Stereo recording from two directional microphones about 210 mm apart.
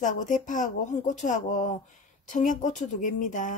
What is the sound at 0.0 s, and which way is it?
Speech, 35° left (ahead or behind).